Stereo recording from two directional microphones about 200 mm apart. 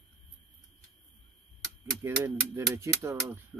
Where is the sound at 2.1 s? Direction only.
15° right (ahead or behind).